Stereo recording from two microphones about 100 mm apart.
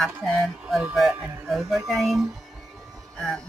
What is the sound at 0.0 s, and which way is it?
Speech, centre (ahead or behind).